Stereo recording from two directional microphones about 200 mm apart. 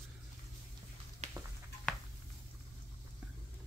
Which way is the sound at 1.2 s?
35° right (ahead or behind).